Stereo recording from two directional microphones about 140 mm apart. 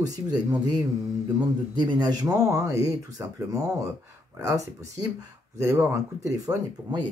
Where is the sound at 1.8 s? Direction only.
30° right (ahead or behind).